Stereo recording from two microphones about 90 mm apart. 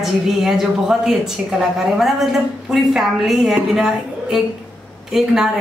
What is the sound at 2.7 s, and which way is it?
A woman's voice, 5° right (ahead or behind).